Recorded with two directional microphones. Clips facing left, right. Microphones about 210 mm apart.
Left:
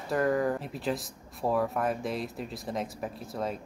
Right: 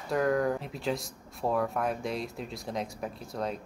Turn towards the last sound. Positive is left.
turn(degrees=0)  # may be behind; listen again after turning